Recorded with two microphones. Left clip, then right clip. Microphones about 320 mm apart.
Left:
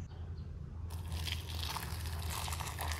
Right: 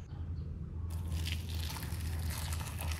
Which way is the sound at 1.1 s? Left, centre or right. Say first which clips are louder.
Left 1 dB; centre.